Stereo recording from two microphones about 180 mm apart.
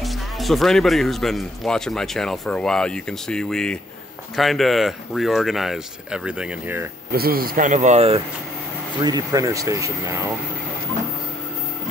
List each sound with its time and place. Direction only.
0.0 s speech: centre (ahead or behind)
7.1 s speech: 55° right (ahead or behind); by 8.2 s 35° right (ahead or behind)
9.0 s speech: 20° right (ahead or behind)